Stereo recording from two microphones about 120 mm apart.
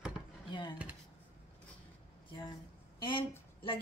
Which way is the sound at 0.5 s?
40° left (ahead or behind).